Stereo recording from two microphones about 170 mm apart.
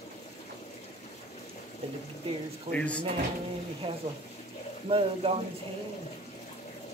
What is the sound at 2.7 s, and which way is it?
Speech, 5° left (ahead or behind).